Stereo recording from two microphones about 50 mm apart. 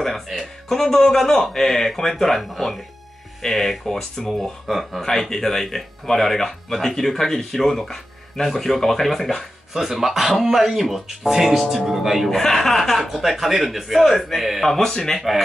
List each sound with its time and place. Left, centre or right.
0.0 s speech: centre
15.1 s speech: centre